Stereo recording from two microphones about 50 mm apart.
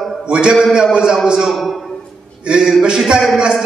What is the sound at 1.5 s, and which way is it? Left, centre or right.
Speech, centre.